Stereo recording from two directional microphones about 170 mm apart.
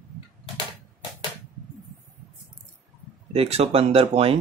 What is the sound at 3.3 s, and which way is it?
Speech, 35° right (ahead or behind).